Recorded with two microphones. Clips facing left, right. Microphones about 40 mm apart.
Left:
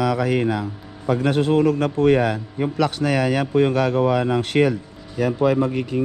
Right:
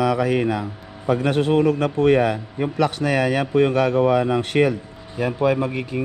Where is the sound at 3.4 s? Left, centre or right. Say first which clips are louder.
Right 1 dB; right.